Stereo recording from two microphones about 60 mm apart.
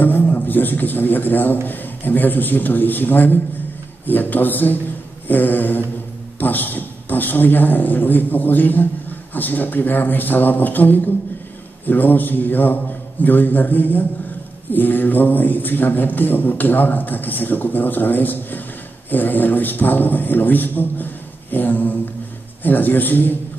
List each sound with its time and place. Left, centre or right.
0.0 s a man's voice: left